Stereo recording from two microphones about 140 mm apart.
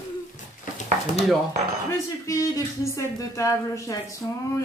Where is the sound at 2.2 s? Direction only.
20° left (ahead or behind).